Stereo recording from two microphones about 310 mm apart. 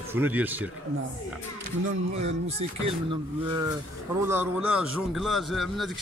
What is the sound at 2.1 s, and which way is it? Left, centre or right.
Speech, right.